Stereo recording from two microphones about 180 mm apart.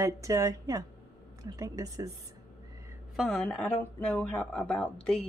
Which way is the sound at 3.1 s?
Centre (ahead or behind).